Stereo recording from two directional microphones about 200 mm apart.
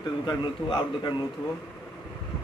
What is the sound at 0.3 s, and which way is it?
Speech, 20° left (ahead or behind).